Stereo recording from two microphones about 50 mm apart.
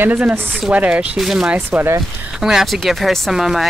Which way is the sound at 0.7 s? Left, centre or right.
Right.